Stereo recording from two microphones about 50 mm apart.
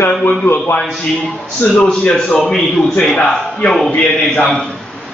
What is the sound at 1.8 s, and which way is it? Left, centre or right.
A man's voice, centre.